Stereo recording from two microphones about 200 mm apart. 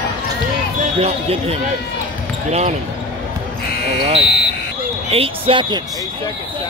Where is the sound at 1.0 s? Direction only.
30° right (ahead or behind).